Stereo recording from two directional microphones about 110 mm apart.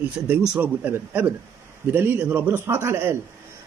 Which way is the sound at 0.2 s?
10° right (ahead or behind).